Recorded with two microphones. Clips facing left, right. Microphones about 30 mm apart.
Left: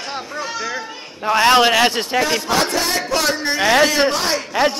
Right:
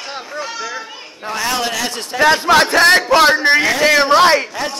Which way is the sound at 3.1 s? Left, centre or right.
Right.